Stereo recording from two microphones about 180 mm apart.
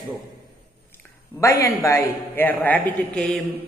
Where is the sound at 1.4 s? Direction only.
15° left (ahead or behind).